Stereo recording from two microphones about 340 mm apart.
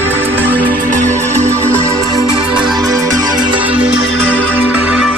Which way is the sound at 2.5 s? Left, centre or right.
Centre.